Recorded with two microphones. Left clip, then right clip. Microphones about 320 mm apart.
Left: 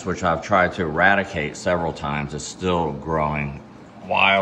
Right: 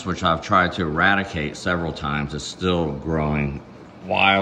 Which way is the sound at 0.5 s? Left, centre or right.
Right.